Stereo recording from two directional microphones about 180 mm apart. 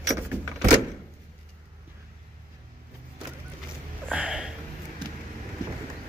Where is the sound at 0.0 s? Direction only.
15° right (ahead or behind).